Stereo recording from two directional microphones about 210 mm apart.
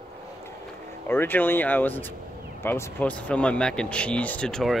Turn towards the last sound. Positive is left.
turn(degrees=5)  # may be behind; listen again after turning